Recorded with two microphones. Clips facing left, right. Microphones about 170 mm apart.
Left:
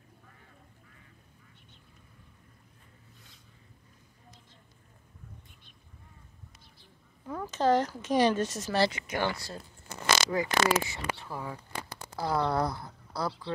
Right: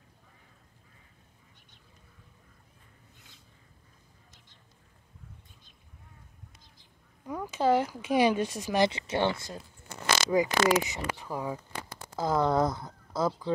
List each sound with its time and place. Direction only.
7.2 s speech: 10° right (ahead or behind)
8.9 s speech: 25° right (ahead or behind)